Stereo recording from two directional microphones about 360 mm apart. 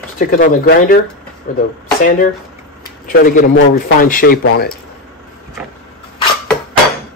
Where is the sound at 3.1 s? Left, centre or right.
Left.